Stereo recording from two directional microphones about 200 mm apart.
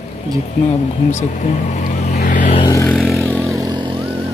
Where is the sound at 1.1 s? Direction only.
40° left (ahead or behind).